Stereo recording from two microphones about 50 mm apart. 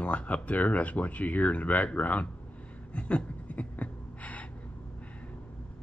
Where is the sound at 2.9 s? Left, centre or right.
Left.